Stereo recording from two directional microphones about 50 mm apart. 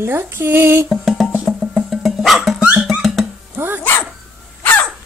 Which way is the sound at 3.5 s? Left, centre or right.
Right.